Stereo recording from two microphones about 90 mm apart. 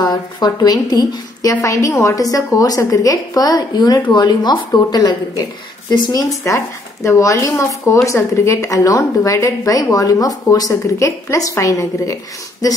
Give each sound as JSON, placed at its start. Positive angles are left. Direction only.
{"t": 0.0, "sound": "a woman's voice", "side_deg": 50}
{"t": 6.4, "sound": "speech", "side_deg": 35}